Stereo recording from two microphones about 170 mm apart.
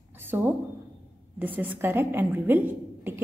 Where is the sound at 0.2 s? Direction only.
10° right (ahead or behind).